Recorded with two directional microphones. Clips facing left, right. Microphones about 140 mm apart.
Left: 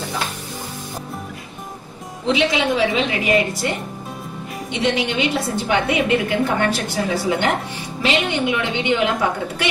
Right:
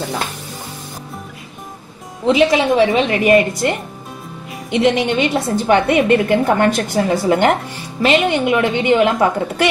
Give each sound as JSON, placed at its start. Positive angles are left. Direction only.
{"t": 2.2, "sound": "a woman's voice", "side_deg": -45}
{"t": 4.6, "sound": "speech", "side_deg": 0}
{"t": 4.9, "sound": "a woman's voice", "side_deg": -45}